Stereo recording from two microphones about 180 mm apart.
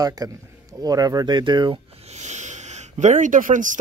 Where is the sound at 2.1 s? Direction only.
40° right (ahead or behind).